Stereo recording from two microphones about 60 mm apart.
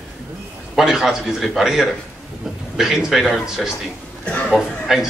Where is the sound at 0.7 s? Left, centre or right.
Centre.